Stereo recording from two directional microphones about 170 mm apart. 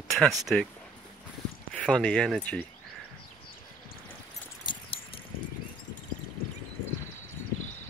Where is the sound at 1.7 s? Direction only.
5° left (ahead or behind).